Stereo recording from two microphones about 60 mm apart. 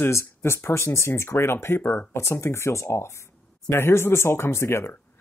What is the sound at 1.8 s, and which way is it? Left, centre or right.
Speech, left.